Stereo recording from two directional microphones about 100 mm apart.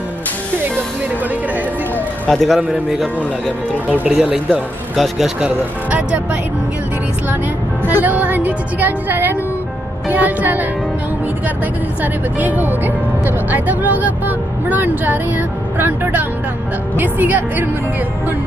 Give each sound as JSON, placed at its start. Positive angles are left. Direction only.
{"t": 2.2, "sound": "speech", "side_deg": 5}
{"t": 4.1, "sound": "speech", "side_deg": -5}
{"t": 5.4, "sound": "speech", "side_deg": -15}
{"t": 7.8, "sound": "speech", "side_deg": -20}
{"t": 12.0, "sound": "speech", "side_deg": -15}